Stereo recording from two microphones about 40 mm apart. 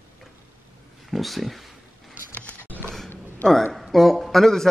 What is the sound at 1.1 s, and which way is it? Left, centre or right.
Speech, centre.